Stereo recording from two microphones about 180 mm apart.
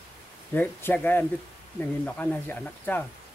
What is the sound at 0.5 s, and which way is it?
Speech, 10° left (ahead or behind).